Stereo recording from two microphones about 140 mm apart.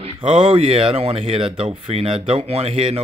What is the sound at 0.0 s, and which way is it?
A man's voice, 40° right (ahead or behind).